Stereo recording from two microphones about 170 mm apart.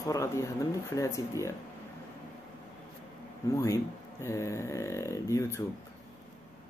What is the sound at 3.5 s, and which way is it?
Speech, 15° left (ahead or behind).